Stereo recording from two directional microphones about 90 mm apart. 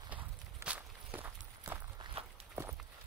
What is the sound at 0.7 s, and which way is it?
Walk, 20° right (ahead or behind).